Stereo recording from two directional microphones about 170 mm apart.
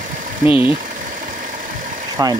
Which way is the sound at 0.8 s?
50° right (ahead or behind).